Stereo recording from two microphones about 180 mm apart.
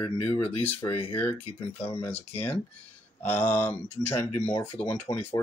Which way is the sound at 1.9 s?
10° left (ahead or behind).